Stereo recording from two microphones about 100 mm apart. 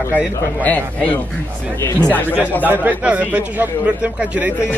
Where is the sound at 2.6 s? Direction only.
20° right (ahead or behind).